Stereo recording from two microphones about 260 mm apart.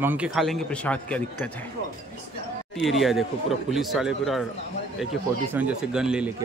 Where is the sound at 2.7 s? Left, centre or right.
Centre.